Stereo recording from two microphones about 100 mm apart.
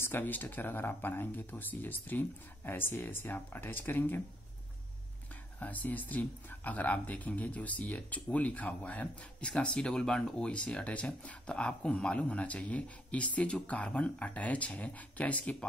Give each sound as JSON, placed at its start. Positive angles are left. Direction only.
{"t": 0.0, "sound": "speech", "side_deg": 20}
{"t": 5.6, "sound": "speech", "side_deg": 15}